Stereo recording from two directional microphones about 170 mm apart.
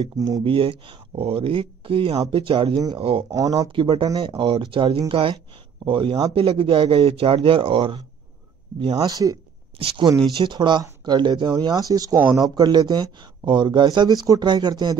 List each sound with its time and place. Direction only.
0.4 s speech: 30° right (ahead or behind)
3.3 s speech: 20° right (ahead or behind)
9.8 s speech: 30° right (ahead or behind)